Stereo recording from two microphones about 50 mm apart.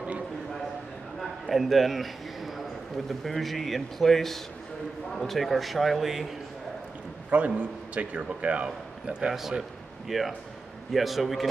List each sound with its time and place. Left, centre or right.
1.2 s a sound: centre
3.1 s speech: centre
7.2 s a man's voice: right
9.3 s a man's voice: centre